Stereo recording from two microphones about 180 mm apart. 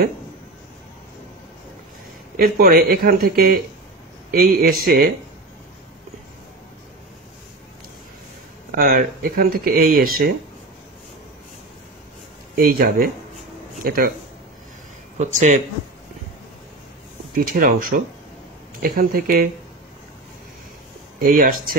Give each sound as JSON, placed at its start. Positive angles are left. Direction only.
{"t": 2.3, "sound": "speech", "side_deg": -55}
{"t": 8.7, "sound": "speech", "side_deg": -55}
{"t": 12.5, "sound": "speech", "side_deg": -55}
{"t": 15.1, "sound": "speech", "side_deg": -40}
{"t": 17.3, "sound": "speech", "side_deg": -50}
{"t": 21.2, "sound": "speech", "side_deg": -55}